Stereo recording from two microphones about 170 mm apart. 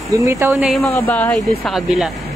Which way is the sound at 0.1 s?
15° right (ahead or behind).